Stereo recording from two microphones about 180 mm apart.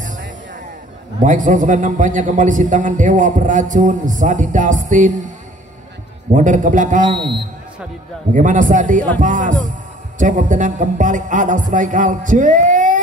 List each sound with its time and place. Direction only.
1.2 s a man's voice: 45° right (ahead or behind)
6.3 s a man's voice: 45° right (ahead or behind)
7.1 s a man's voice: 25° right (ahead or behind)
8.3 s a man's voice: 45° right (ahead or behind)